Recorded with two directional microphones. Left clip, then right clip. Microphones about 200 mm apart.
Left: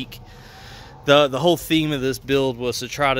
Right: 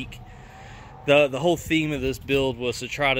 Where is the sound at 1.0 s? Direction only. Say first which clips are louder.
Left 3 dB; 15° left (ahead or behind).